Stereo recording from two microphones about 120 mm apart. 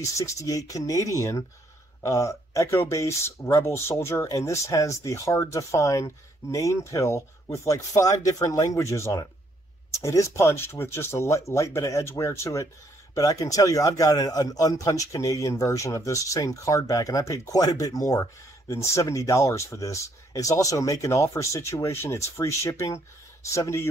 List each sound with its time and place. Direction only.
0.0 s a man's voice: 25° left (ahead or behind)